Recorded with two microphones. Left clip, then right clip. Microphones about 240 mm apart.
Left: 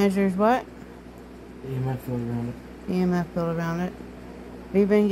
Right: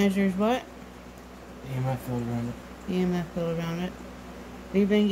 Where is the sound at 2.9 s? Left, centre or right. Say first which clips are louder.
Left 3 dB; centre.